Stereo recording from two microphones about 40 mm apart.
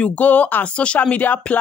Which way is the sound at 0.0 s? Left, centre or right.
Left.